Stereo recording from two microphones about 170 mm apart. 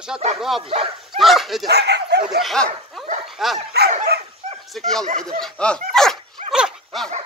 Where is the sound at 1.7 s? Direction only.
75° right (ahead or behind).